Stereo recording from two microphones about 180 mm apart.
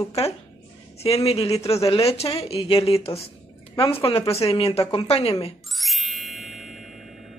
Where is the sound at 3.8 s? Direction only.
30° left (ahead or behind).